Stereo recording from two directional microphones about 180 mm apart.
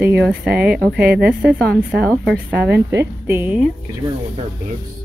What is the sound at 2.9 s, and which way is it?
Speech, 15° right (ahead or behind).